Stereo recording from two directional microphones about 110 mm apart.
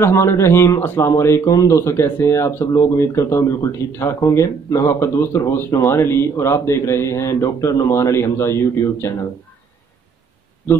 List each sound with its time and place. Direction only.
0.0 s speech: 25° left (ahead or behind)